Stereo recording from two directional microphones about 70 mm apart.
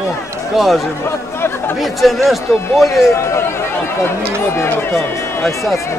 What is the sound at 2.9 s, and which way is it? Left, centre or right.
Speech, left.